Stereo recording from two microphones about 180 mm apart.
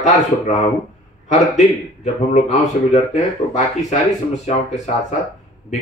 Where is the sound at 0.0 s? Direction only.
40° left (ahead or behind).